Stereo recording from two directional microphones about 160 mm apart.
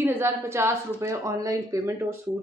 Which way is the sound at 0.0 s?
15° right (ahead or behind).